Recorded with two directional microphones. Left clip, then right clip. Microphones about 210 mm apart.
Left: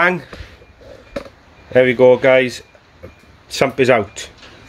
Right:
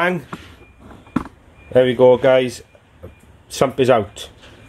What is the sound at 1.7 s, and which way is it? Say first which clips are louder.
Speech: left 1 dB; 5° right (ahead or behind).